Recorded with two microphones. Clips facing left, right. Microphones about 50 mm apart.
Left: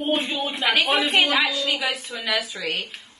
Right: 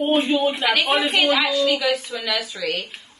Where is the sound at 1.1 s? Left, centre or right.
Centre.